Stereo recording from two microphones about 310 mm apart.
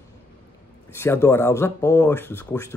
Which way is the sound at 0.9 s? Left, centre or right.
Centre.